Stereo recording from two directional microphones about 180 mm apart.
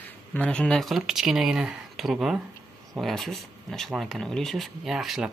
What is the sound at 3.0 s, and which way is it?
Speech, centre (ahead or behind).